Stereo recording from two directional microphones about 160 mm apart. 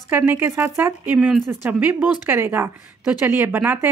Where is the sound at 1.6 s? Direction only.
10° right (ahead or behind).